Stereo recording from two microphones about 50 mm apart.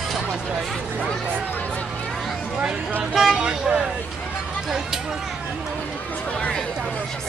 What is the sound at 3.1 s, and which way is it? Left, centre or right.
Vehicle, centre.